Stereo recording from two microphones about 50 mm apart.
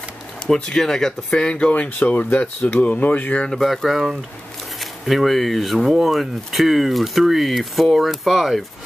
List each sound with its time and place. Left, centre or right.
0.5 s speech: centre
1.5 s speech: left
3.3 s speech: centre